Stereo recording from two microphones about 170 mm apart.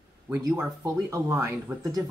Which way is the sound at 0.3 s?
15° right (ahead or behind).